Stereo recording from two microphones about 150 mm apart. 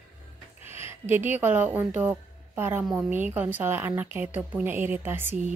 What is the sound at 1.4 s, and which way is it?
Speech, 10° right (ahead or behind).